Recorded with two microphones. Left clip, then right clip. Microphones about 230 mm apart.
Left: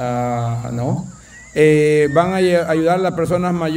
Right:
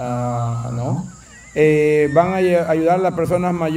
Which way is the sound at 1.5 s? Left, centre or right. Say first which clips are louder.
Left 2 dB; centre.